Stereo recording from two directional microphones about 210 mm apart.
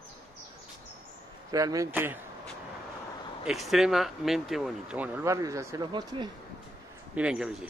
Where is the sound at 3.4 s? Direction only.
Centre (ahead or behind); by 6.3 s 20° right (ahead or behind).